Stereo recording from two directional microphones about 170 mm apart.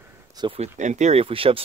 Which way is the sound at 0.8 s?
45° right (ahead or behind).